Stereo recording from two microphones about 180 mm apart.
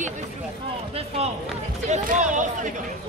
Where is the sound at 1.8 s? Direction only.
40° right (ahead or behind).